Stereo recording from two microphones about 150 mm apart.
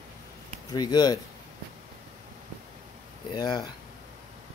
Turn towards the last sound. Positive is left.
turn(degrees=30)  # may be behind; listen again after turning